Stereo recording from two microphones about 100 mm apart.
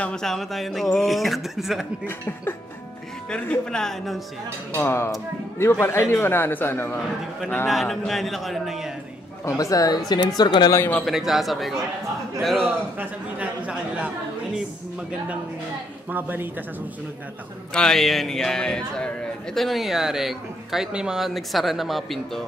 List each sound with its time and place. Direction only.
0.0 s a man's voice: 5° left (ahead or behind)
2.0 s a man's voice: 20° left (ahead or behind)
3.3 s a man's voice: 5° left (ahead or behind)
4.7 s a man's voice: 25° left (ahead or behind)
7.6 s a man's voice: centre (ahead or behind)
9.4 s a woman's voice: 30° left (ahead or behind)
11.1 s a man's voice: 5° right (ahead or behind)
12.6 s speech: 15° right (ahead or behind)
17.7 s a man's voice: 5° left (ahead or behind)